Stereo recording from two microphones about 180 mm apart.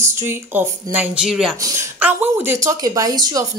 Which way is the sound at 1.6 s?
15° right (ahead or behind).